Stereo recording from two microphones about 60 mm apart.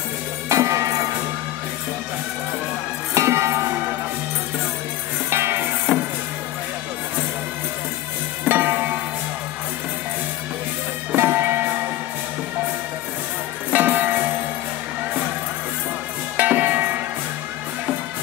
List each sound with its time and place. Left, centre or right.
0.5 s music: right
3.2 s music: right
5.3 s music: right
5.9 s music: right
8.5 s music: right
11.1 s music: right
13.7 s music: right
16.3 s music: right